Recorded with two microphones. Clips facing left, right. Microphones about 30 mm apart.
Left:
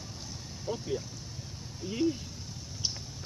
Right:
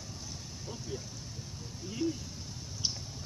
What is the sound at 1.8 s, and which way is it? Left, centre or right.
Vehicle, left.